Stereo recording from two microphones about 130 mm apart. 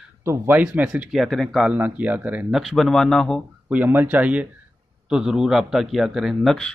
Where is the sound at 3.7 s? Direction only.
15° right (ahead or behind).